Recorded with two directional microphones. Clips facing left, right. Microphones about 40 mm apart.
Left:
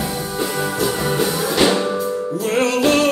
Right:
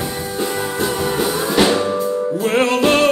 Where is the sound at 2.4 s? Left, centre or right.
Right.